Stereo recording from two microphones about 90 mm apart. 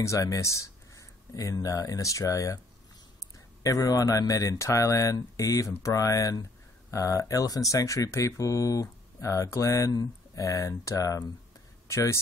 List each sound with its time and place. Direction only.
0.0 s speech: 35° left (ahead or behind)
3.6 s speech: 40° left (ahead or behind)